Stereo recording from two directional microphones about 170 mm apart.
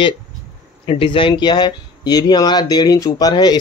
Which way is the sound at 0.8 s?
30° left (ahead or behind).